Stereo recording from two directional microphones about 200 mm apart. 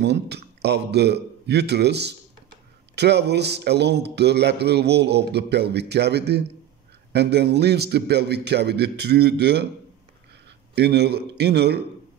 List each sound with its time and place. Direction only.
0.0 s a man's voice: 55° right (ahead or behind)
10.7 s speech: 55° right (ahead or behind)